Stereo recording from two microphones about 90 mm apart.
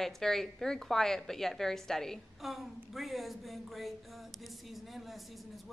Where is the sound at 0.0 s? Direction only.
5° left (ahead or behind).